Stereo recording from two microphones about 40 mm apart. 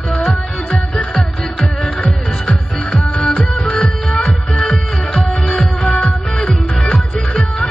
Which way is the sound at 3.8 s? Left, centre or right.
Left.